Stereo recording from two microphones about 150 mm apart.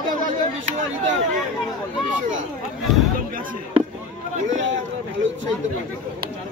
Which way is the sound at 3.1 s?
65° right (ahead or behind).